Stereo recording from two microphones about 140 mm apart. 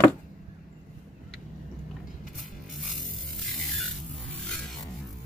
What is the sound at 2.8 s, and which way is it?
Music, centre (ahead or behind).